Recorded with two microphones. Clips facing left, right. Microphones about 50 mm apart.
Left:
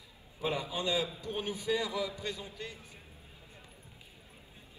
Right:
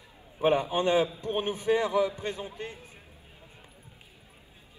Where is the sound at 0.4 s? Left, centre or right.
Right.